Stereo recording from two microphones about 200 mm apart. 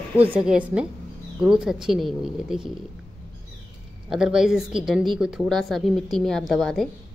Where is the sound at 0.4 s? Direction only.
5° right (ahead or behind).